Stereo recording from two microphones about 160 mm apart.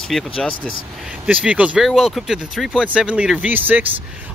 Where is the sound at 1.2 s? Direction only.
10° right (ahead or behind).